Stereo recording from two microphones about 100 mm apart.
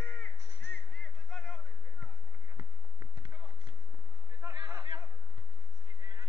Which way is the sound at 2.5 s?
50° right (ahead or behind).